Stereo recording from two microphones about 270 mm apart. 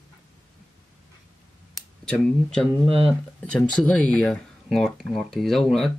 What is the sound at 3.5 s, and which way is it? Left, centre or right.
Speech, centre.